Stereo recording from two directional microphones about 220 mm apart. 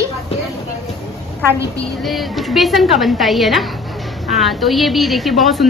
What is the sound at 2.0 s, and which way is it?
A woman's voice, centre (ahead or behind).